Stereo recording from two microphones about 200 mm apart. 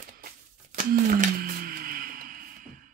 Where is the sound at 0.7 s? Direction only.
40° right (ahead or behind).